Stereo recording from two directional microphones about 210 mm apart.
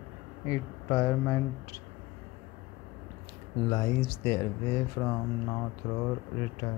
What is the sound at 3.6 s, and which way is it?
Speech, 15° left (ahead or behind).